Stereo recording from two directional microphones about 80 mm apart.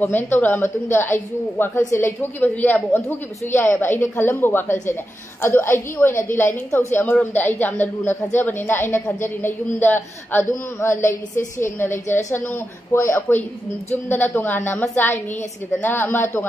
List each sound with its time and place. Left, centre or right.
0.0 s a woman's voice: left
2.4 s a woman's voice: left